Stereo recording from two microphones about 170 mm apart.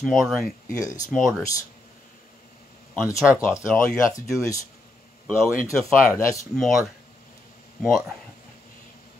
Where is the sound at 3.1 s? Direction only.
15° left (ahead or behind).